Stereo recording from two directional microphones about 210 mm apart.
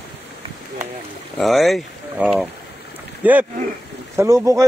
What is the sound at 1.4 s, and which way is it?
Speech, centre (ahead or behind).